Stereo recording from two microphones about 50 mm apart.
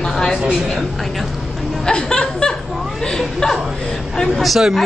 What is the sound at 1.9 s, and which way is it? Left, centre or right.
A woman's voice, centre.